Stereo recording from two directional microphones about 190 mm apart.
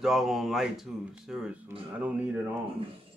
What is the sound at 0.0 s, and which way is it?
Speech, centre (ahead or behind).